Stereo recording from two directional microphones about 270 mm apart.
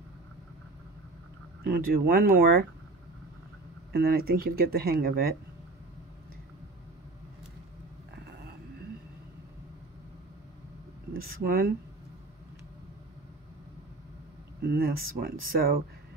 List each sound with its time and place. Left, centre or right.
1.6 s speech: right
3.9 s speech: right
11.1 s speech: right
14.6 s speech: right